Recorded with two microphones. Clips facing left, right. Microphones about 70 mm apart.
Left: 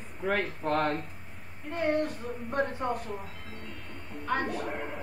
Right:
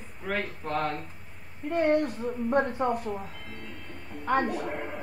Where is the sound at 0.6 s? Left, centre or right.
Left.